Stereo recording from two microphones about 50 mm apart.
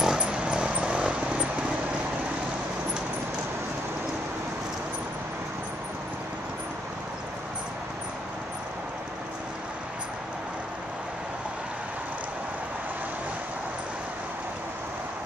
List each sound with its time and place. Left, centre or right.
0.0 s vehicle: centre